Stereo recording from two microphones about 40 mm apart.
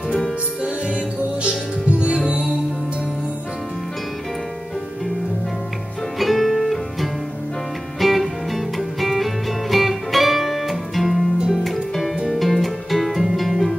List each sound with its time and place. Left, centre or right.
1.9 s music: right
6.1 s music: centre